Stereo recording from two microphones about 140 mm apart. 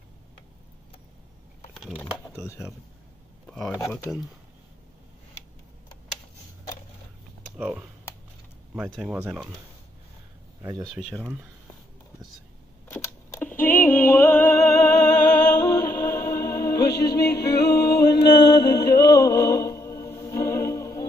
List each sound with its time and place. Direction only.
3.4 s a sound: 5° left (ahead or behind)
3.7 s speech: 20° left (ahead or behind)
7.5 s speech: 10° right (ahead or behind)
8.9 s speech: 5° right (ahead or behind)
11.0 s speech: 5° left (ahead or behind)
12.9 s a sound: 15° left (ahead or behind)